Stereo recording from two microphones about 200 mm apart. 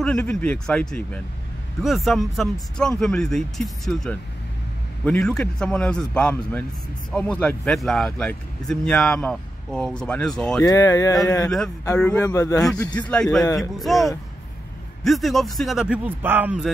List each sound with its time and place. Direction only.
0.0 s speech: 5° left (ahead or behind)
10.6 s speech: 20° left (ahead or behind)
12.0 s speech: 5° left (ahead or behind)